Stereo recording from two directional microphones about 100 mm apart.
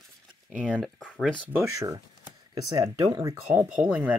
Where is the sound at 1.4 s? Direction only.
15° right (ahead or behind).